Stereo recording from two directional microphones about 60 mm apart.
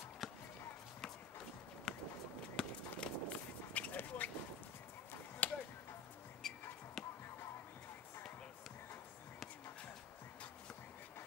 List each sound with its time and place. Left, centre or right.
0.2 s a sound: centre
1.9 s a sound: centre
2.5 s run: centre
5.4 s chop: left
6.4 s basketball bounce: centre
7.0 s music: centre